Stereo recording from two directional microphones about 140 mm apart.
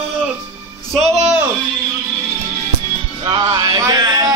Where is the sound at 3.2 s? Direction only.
35° right (ahead or behind).